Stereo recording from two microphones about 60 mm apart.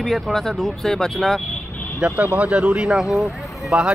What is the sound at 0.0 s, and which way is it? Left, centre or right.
Speech, centre.